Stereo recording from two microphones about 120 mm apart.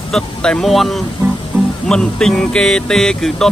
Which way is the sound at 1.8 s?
5° left (ahead or behind).